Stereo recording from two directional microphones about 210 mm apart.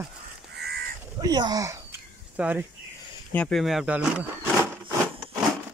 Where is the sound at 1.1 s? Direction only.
20° right (ahead or behind).